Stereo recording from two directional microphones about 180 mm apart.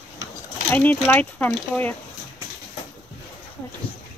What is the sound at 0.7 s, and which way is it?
Speech, 10° left (ahead or behind).